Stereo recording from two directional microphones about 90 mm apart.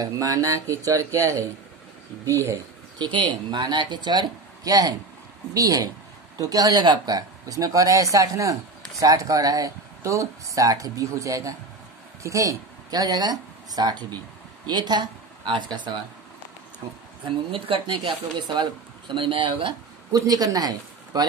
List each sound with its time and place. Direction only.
0.0 s speech: 45° right (ahead or behind)
3.0 s speech: 60° right (ahead or behind)
17.5 s speech: 85° right
20.1 s speech: 45° right (ahead or behind)